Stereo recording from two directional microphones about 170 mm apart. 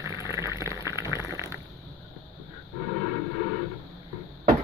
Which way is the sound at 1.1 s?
20° left (ahead or behind).